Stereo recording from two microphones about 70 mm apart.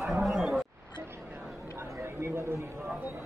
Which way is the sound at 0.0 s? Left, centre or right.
Centre.